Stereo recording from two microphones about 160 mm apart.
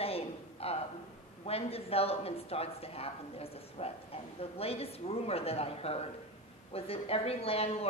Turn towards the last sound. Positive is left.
turn(degrees=40)  # may be behind; listen again after turning